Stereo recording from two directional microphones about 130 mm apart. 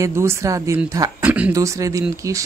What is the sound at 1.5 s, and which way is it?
Speech, 25° right (ahead or behind).